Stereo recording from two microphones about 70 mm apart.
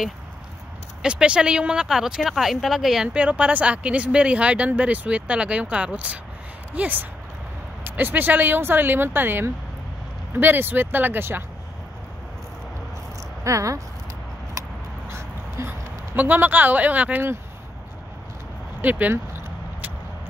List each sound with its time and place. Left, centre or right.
1.0 s speech: centre
3.1 s speech: centre
13.4 s speech: right
15.0 s dog: right
16.2 s speech: right
18.8 s vehicle: right